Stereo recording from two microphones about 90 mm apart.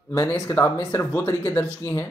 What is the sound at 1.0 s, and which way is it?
Speech, 20° left (ahead or behind).